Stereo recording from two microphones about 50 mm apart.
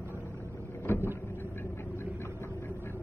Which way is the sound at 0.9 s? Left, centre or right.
Left.